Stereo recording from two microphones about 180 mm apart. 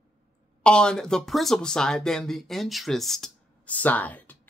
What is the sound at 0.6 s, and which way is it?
Speech, 5° left (ahead or behind).